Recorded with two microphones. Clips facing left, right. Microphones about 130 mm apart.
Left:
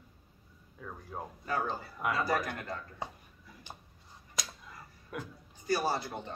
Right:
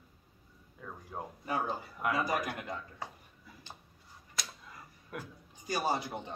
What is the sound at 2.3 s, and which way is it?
Speech, 15° right (ahead or behind).